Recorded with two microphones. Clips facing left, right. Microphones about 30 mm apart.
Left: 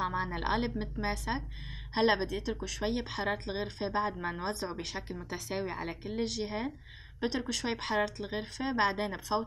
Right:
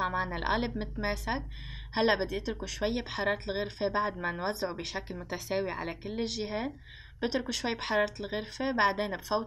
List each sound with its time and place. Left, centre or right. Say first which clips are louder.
0.0 s speech: right 2 dB; centre